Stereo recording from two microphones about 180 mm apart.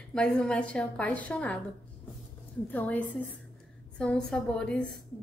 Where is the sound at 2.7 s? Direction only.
10° left (ahead or behind).